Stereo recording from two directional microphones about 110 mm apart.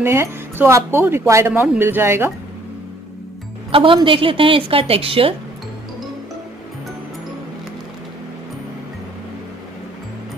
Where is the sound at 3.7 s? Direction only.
50° right (ahead or behind).